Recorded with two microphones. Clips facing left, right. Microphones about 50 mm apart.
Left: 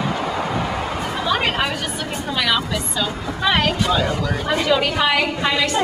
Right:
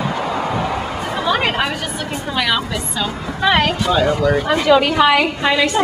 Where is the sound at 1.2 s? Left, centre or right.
Centre.